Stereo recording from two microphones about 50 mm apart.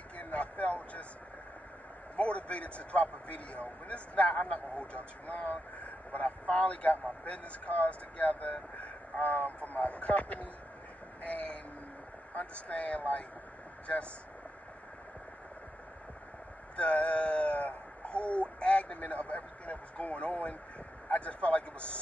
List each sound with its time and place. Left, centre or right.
0.2 s a sound: left
2.1 s a man's voice: left
16.7 s a man's voice: left